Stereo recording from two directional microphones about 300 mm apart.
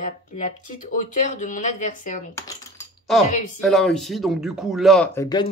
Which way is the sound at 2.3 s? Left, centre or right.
Centre.